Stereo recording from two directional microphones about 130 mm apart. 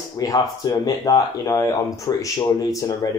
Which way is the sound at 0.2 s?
30° left (ahead or behind).